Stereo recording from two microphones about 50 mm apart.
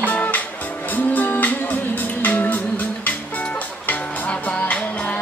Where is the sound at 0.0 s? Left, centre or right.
Left.